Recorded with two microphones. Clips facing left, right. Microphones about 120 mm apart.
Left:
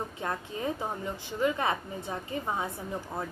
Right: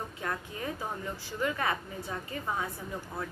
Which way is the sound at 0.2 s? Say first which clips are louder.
Left 3 dB; 25° left (ahead or behind).